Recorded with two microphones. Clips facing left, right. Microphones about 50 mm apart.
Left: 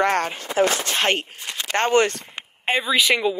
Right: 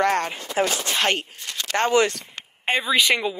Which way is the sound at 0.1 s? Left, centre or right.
Left.